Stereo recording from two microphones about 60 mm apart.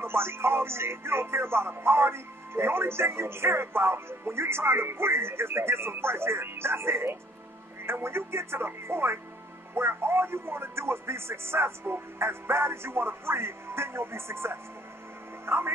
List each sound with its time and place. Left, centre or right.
0.0 s music: right
15.4 s speech: right